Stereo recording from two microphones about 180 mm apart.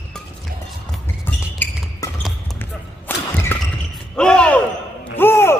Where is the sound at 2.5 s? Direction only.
10° left (ahead or behind).